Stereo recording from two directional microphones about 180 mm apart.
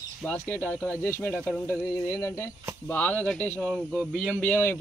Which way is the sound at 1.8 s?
20° left (ahead or behind).